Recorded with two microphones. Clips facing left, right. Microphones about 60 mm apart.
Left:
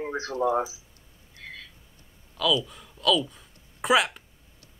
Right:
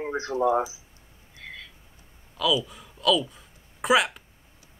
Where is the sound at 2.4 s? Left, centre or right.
Centre.